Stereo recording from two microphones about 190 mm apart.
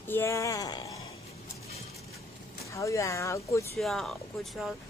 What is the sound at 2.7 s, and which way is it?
Speech, 15° left (ahead or behind).